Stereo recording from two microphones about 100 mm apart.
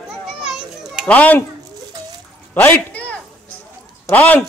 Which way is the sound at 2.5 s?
20° left (ahead or behind).